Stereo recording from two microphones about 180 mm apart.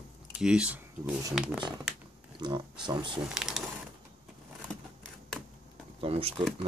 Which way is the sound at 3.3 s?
5° right (ahead or behind).